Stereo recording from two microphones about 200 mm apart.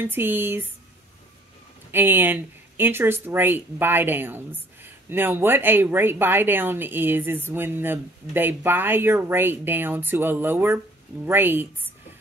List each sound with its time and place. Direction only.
0.0 s speech: 10° right (ahead or behind)
1.9 s speech: 10° right (ahead or behind)